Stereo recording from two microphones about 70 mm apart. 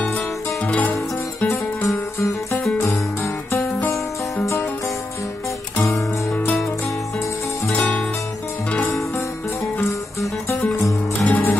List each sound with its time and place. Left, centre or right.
0.7 s music: left
3.5 s music: left
6.3 s music: left
7.7 s music: centre
11.2 s music: left